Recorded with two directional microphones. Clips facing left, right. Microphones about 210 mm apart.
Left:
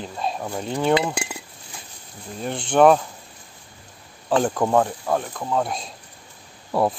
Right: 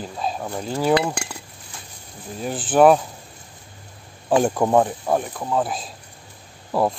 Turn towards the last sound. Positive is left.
turn(degrees=0)  # may be behind; listen again after turning